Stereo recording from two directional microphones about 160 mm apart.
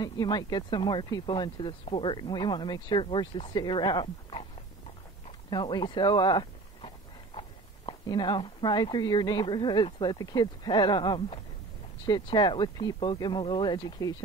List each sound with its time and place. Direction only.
0.0 s speech: 25° left (ahead or behind)
5.5 s speech: 25° left (ahead or behind)